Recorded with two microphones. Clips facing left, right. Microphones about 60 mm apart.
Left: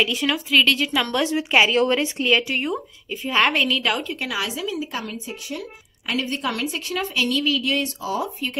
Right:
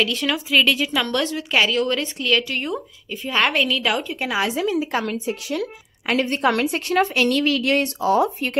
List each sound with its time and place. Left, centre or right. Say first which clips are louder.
0.0 s a woman's voice: even; centre
1.3 s speech: left 5 dB; left
2.7 s a woman's voice: even; centre
4.2 s a woman's voice: right 4 dB; right
4.5 s speech: right 6 dB; right
6.0 s a woman's voice: right 6 dB; right